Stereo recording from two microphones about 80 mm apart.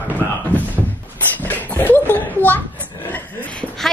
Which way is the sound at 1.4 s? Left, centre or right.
Left.